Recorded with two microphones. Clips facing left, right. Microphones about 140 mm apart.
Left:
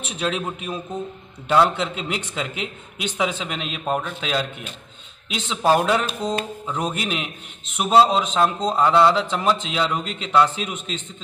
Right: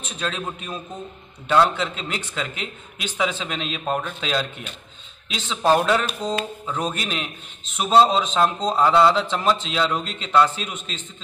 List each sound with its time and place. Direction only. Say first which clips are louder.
0.2 s a man's voice: left 3 dB; 15° left (ahead or behind)